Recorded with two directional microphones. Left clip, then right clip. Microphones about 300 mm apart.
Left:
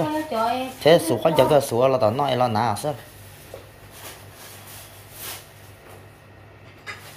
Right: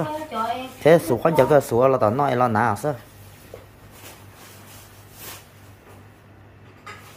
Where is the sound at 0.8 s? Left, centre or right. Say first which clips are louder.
Right 1 dB; centre.